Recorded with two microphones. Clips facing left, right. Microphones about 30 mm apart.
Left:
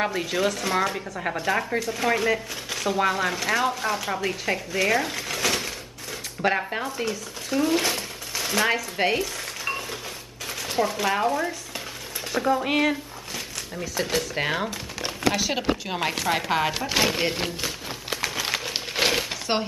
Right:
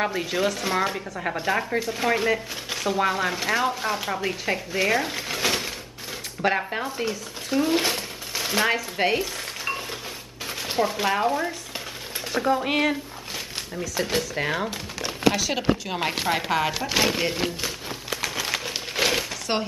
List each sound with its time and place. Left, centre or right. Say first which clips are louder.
0.0 s speech: even; centre
14.0 s speech: even; right
14.3 s speech: even; centre
16.3 s a sound: even; centre